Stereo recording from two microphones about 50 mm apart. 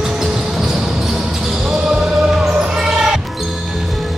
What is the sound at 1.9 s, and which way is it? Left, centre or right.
Basketball bounce, centre.